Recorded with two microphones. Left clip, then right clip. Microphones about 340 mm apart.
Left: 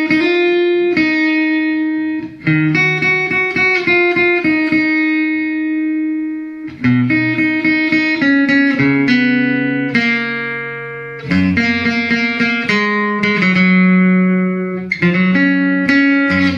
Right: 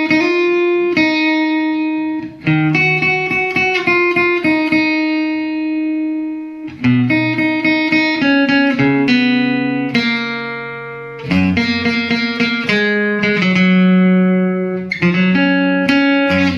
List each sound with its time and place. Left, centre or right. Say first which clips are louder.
0.8 s music: even; centre
2.4 s music: even; centre
7.1 s music: left 1 dB; centre
11.3 s music: left 1 dB; centre